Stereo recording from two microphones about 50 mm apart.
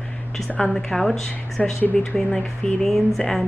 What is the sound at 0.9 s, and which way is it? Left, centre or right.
Speech, centre.